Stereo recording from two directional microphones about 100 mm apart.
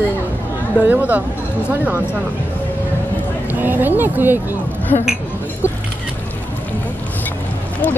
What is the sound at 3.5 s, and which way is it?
Speech, 20° right (ahead or behind).